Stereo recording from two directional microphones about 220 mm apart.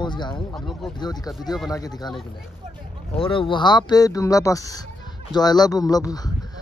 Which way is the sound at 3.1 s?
25° left (ahead or behind).